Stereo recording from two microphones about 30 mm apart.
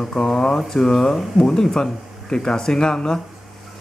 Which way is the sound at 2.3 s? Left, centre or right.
Left.